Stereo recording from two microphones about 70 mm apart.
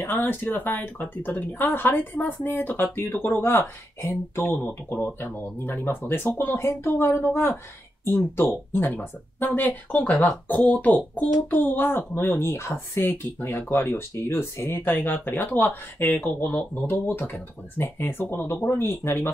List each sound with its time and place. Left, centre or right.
0.0 s speech: left